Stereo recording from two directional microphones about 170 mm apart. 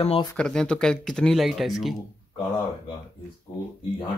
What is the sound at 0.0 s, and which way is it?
Speech, 35° left (ahead or behind).